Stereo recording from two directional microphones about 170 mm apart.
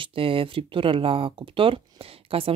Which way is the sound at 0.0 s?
30° right (ahead or behind).